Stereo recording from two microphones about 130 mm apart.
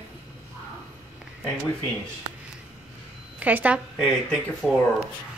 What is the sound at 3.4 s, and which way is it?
A woman's voice, 10° right (ahead or behind).